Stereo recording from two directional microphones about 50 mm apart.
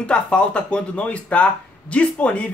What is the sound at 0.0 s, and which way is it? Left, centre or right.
Speech, left.